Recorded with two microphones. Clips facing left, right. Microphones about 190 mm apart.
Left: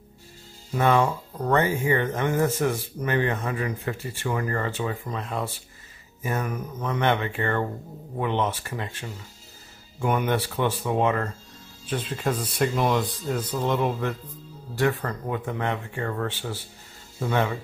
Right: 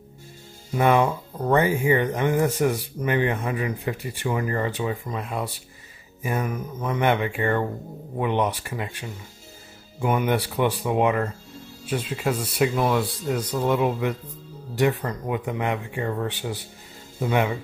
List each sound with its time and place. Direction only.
0.7 s speech: 15° right (ahead or behind)